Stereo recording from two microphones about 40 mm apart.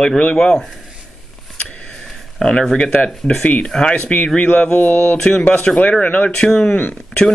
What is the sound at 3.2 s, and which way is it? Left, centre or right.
Speech, centre.